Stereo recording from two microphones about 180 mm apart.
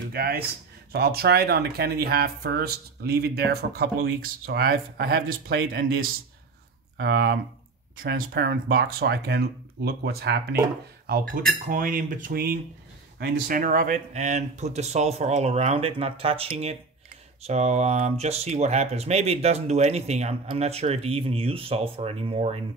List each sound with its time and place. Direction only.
0.1 s speech: 55° right (ahead or behind)
11.6 s cutlery: 50° right (ahead or behind)
13.2 s speech: 50° right (ahead or behind); by 22.6 s 30° right (ahead or behind)